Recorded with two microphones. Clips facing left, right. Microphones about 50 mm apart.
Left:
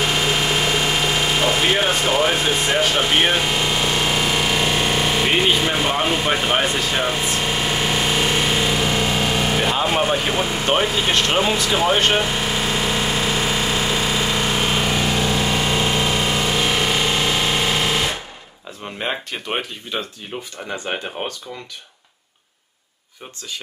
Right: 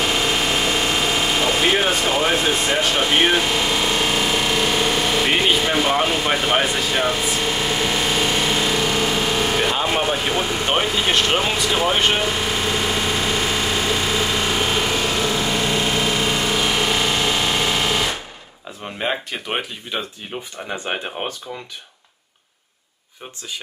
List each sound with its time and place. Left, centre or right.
0.0 s engine: centre
18.9 s speech: centre
20.7 s speech: centre